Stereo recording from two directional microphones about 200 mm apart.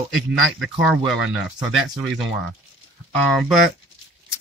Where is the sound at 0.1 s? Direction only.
Centre (ahead or behind).